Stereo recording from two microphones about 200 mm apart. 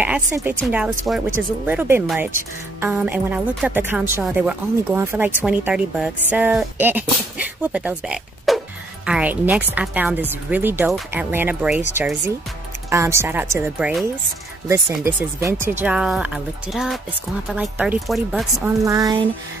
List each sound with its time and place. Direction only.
0.0 s a woman's voice: 10° right (ahead or behind)
18.7 s speech: 15° right (ahead or behind)